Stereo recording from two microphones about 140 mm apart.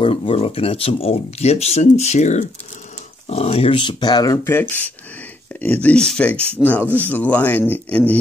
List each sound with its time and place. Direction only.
0.0 s speech: 35° left (ahead or behind); by 2.5 s 55° left (ahead or behind)
3.3 s speech: 45° left (ahead or behind); by 4.6 s 30° left (ahead or behind)
4.6 s speech: 15° left (ahead or behind)